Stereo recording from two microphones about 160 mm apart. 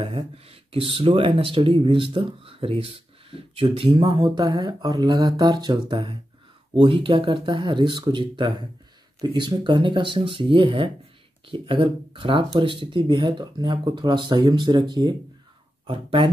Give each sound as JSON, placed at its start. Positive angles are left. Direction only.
{"t": 0.0, "sound": "speech", "side_deg": -35}